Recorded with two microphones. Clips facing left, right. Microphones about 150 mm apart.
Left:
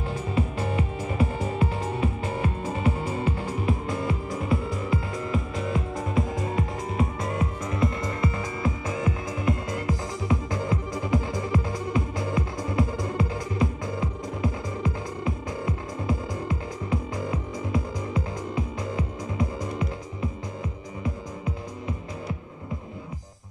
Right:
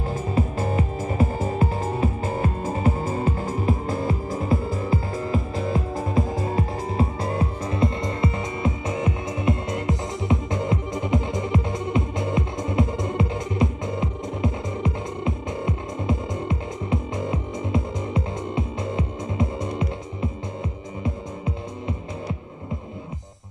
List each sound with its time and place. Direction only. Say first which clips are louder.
0.1 s music: right 3 dB; 40° right (ahead or behind); by 20.2 s 25° right (ahead or behind)